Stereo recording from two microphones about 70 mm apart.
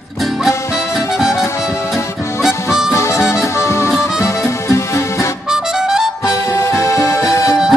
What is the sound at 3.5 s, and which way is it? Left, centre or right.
Music, left.